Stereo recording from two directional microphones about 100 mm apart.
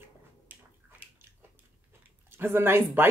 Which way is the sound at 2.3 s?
25° right (ahead or behind).